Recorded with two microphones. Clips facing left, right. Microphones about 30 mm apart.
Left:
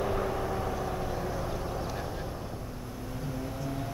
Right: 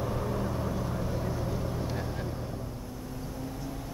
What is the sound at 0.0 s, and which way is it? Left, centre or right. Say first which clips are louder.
Vehicle: left 2 dB; left.